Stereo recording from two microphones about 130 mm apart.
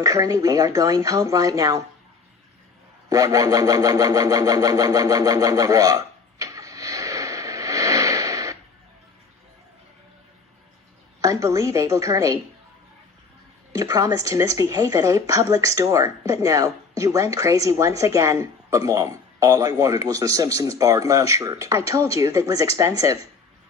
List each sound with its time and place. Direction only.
0.0 s a woman's voice: 25° right (ahead or behind)
3.1 s a sound: 25° right (ahead or behind)
11.1 s a woman's voice: 25° right (ahead or behind)
13.7 s a woman's voice: 25° right (ahead or behind)